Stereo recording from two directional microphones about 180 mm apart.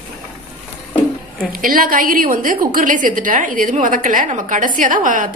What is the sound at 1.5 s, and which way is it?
A woman's voice, 50° right (ahead or behind).